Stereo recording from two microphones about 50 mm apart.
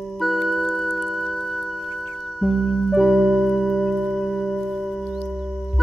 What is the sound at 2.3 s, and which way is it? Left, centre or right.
Music, centre.